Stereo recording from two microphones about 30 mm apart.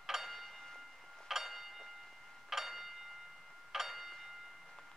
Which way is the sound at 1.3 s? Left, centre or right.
Centre.